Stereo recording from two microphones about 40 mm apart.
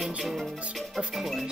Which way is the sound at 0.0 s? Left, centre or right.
Centre.